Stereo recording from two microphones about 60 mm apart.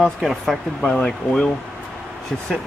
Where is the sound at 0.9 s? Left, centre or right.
Centre.